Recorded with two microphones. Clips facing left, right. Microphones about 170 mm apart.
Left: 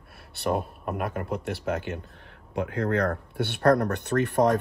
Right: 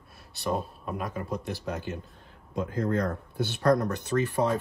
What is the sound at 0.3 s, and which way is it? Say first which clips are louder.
Speech: left 3 dB; 60° left (ahead or behind).